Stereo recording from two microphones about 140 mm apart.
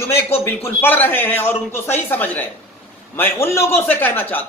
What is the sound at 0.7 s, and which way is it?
A man's voice, 15° left (ahead or behind).